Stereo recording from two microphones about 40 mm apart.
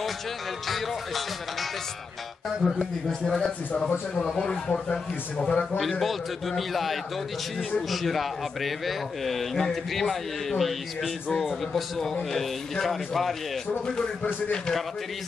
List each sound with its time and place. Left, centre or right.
0.7 s a man's voice: centre
3.1 s speech: centre
5.8 s a man's voice: centre